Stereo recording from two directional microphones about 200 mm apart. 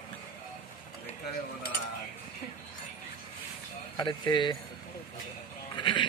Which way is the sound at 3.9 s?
20° left (ahead or behind).